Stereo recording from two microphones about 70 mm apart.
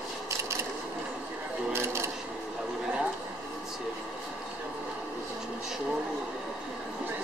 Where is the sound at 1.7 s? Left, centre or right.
Right.